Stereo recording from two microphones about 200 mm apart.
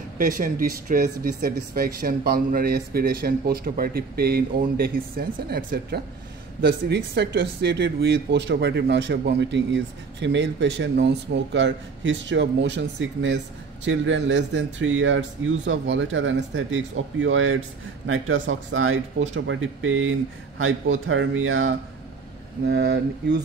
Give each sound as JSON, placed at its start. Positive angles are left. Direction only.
{"t": 0.2, "sound": "speech", "side_deg": -45}
{"t": 18.0, "sound": "speech", "side_deg": -90}
{"t": 19.3, "sound": "speech", "side_deg": -70}
{"t": 22.7, "sound": "speech", "side_deg": -60}